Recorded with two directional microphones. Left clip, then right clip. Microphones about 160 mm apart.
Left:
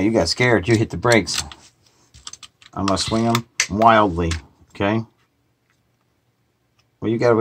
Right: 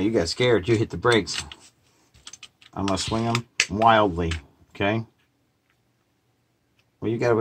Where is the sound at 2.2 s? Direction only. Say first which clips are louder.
Left 5 dB; 50° left (ahead or behind).